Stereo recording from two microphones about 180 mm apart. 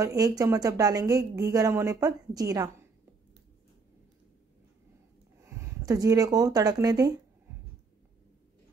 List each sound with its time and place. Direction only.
0.0 s a woman's voice: 20° right (ahead or behind)
5.5 s speech: 15° right (ahead or behind)